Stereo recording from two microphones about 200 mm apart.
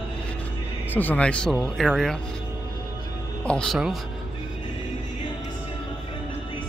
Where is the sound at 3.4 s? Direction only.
5° left (ahead or behind).